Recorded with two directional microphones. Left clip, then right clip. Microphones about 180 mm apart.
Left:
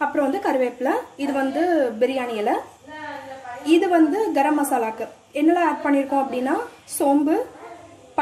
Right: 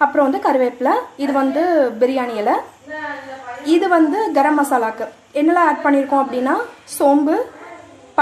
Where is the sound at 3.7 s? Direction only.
10° left (ahead or behind).